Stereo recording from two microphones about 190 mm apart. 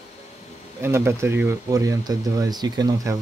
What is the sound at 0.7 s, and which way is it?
Speech, 10° right (ahead or behind).